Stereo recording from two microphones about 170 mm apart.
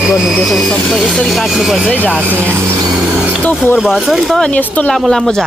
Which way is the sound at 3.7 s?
Centre (ahead or behind).